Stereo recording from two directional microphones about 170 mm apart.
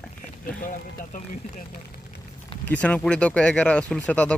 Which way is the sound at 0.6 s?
50° left (ahead or behind).